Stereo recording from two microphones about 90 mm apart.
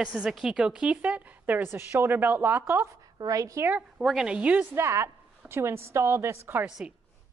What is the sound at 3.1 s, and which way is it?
Speech, 40° right (ahead or behind).